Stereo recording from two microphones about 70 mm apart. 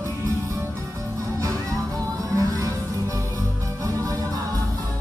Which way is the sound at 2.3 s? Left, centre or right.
Right.